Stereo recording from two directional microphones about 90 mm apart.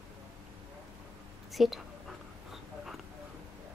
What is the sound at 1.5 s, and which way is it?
Speech, centre (ahead or behind).